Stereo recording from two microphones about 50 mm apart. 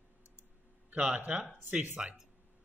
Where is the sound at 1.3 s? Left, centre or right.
Right.